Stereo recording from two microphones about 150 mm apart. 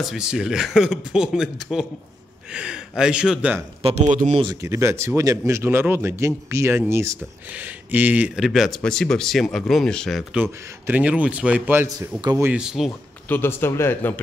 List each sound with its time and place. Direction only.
0.0 s speech: 5° right (ahead or behind)
3.8 s speech: 55° right (ahead or behind)
4.4 s speech: 25° right (ahead or behind); by 10.2 s 5° left (ahead or behind)
10.3 s a man's voice: 10° right (ahead or behind)
13.3 s speech: 15° left (ahead or behind)